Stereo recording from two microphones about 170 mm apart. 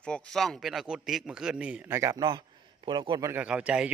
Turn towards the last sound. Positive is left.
turn(degrees=-5)  # may be behind; listen again after turning